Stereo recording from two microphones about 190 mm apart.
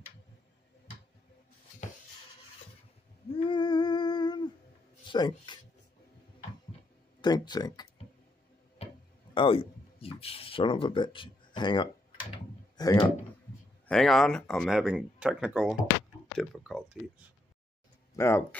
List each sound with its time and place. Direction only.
3.3 s a sound: 25° left (ahead or behind)
5.0 s speech: 25° left (ahead or behind)
7.2 s speech: 20° left (ahead or behind)
8.8 s a sound: 30° left (ahead or behind)
9.3 s speech: 30° left (ahead or behind)
13.8 s speech: centre (ahead or behind)
18.1 s speech: 15° left (ahead or behind)